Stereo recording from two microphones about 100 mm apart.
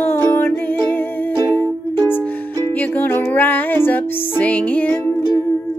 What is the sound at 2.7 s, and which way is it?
Music, 20° left (ahead or behind).